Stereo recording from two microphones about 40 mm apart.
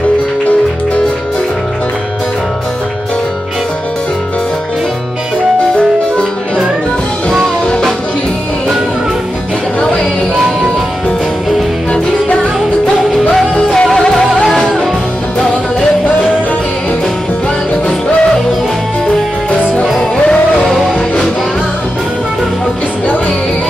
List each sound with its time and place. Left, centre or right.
13.6 s music: centre